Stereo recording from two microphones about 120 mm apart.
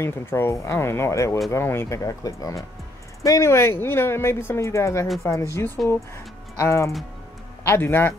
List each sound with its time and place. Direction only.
0.0 s speech: 20° left (ahead or behind)